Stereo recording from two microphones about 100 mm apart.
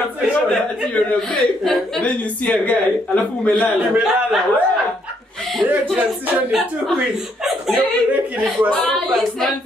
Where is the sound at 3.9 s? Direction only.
5° right (ahead or behind).